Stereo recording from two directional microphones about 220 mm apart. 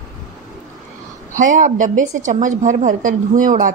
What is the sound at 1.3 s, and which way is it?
A woman's voice, 35° right (ahead or behind).